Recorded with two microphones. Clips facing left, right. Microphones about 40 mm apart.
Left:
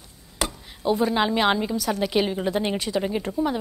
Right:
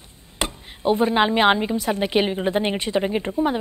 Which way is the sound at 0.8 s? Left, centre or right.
Right.